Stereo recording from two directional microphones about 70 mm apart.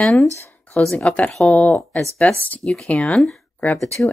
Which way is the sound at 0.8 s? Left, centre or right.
Centre.